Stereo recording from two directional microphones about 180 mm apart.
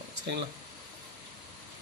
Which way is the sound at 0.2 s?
70° right (ahead or behind).